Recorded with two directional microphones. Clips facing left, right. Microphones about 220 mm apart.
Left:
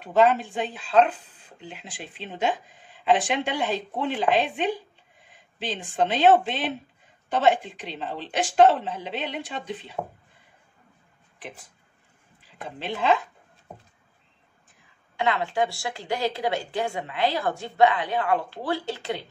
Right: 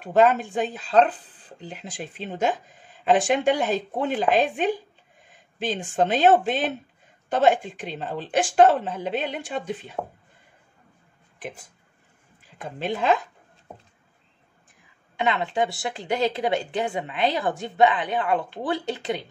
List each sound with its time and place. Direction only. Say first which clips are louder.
0.0 s speech: right 1 dB; 45° right (ahead or behind)
11.3 s speech: right 4 dB; 45° right (ahead or behind)
12.6 s speech: right 2 dB; 45° right (ahead or behind)
15.1 s a woman's voice: right 1 dB; 20° right (ahead or behind)